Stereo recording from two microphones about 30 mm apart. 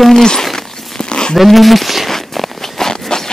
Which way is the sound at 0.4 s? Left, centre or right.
Centre.